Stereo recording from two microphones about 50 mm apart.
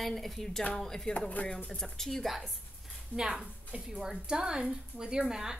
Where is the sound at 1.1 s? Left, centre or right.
Left.